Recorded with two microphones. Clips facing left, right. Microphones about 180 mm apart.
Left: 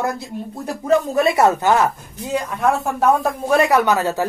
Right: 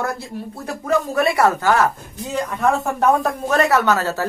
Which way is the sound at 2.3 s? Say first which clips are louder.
Even; 10° left (ahead or behind).